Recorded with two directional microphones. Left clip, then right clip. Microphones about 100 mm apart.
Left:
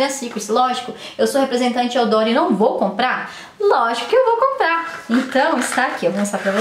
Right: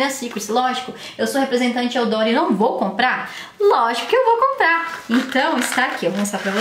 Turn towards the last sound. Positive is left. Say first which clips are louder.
# left 3 dB
turn(degrees=0)  # may be behind; listen again after turning